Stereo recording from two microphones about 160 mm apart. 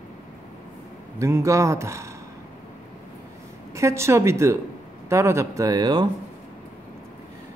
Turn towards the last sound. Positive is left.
turn(degrees=-25)  # may be behind; listen again after turning